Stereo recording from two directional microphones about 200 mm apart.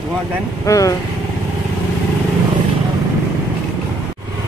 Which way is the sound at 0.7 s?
15° left (ahead or behind).